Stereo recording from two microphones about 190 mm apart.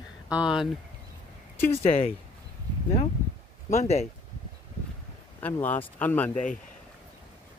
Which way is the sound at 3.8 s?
35° left (ahead or behind).